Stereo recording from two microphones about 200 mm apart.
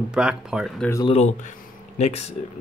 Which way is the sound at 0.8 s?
15° left (ahead or behind).